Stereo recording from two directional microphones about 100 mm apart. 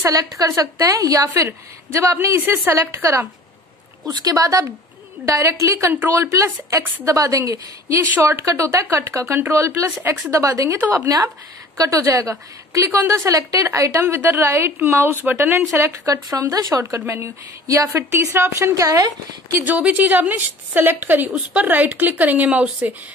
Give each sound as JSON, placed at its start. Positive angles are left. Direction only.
{"t": 0.0, "sound": "a woman's voice", "side_deg": -35}
{"t": 4.0, "sound": "a woman's voice", "side_deg": -40}
{"t": 19.6, "sound": "a woman's voice", "side_deg": -15}